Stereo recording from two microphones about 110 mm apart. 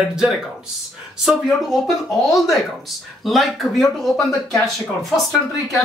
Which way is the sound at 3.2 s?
Centre (ahead or behind).